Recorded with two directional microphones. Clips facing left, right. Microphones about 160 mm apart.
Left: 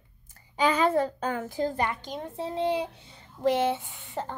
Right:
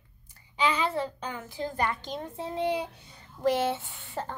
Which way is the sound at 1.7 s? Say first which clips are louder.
Even; 15° left (ahead or behind).